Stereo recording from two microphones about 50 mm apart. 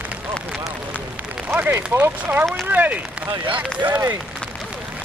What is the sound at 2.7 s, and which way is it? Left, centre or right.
Speech, right.